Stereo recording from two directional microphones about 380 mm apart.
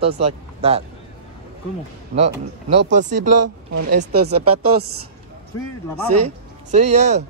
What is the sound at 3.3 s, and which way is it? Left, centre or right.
Speech, right.